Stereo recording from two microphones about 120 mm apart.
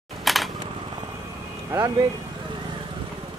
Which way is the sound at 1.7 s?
25° right (ahead or behind).